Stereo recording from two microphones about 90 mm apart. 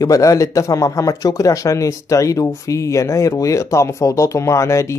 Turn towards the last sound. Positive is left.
turn(degrees=30)  # may be behind; listen again after turning